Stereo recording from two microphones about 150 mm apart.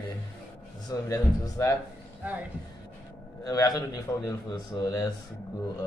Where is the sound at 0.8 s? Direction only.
25° left (ahead or behind).